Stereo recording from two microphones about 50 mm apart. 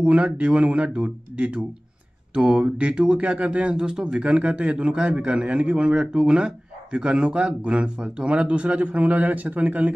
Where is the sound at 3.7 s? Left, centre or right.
Centre.